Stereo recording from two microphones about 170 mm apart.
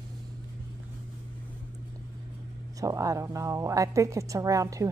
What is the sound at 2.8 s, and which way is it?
A woman's voice, 20° right (ahead or behind).